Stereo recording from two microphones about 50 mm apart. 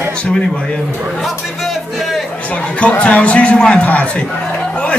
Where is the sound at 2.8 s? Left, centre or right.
Left.